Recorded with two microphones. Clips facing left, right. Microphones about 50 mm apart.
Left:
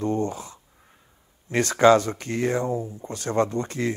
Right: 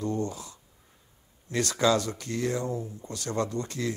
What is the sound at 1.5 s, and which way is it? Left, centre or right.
Speech, left.